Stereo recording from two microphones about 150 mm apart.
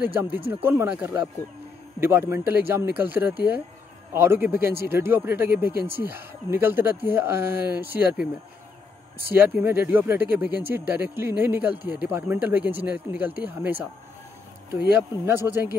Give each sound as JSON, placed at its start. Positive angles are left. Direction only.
{"t": 0.0, "sound": "speech", "side_deg": -15}
{"t": 9.6, "sound": "speech", "side_deg": -15}
{"t": 15.2, "sound": "speech", "side_deg": -15}